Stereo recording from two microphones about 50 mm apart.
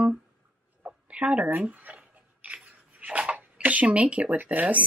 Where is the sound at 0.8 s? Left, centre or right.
Right.